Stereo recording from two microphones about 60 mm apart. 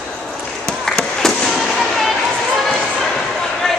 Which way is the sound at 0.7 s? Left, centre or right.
Centre.